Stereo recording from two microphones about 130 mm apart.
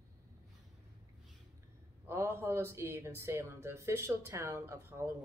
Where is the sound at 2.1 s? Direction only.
20° right (ahead or behind).